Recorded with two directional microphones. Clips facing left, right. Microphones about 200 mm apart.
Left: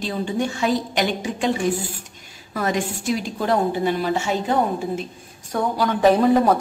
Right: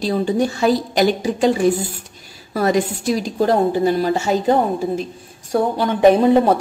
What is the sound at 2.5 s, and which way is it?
A woman's voice, 35° right (ahead or behind).